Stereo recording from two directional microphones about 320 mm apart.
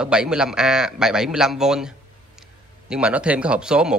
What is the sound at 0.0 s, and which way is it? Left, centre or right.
Speech, centre.